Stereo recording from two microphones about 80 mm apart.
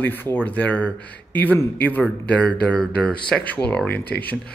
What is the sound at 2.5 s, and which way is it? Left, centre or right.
Speech, centre.